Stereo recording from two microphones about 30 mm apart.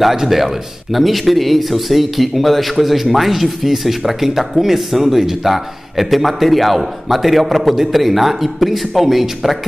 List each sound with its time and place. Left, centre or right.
0.2 s a man's voice: centre